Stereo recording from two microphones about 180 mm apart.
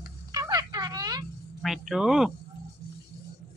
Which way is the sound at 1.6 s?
Centre (ahead or behind).